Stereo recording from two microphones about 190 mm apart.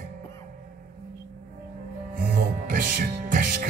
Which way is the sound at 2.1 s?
45° right (ahead or behind).